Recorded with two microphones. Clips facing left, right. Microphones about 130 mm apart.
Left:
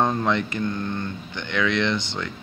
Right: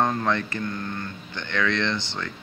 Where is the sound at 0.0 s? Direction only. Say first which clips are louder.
Left 2 dB; 15° left (ahead or behind).